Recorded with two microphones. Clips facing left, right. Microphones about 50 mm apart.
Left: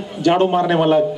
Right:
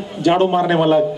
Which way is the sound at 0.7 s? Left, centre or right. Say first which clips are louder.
Even; centre.